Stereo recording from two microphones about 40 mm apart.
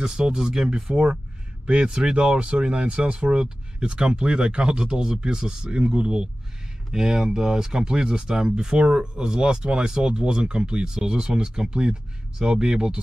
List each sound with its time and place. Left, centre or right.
0.0 s speech: centre